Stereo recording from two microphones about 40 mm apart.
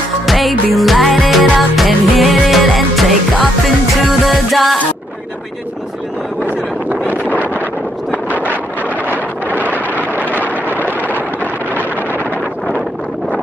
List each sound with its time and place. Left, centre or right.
0.3 s music: centre
9.0 s wind noise: right
10.2 s vehicle: left